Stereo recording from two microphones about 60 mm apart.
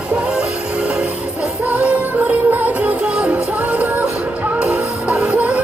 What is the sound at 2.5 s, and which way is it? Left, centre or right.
Music, right.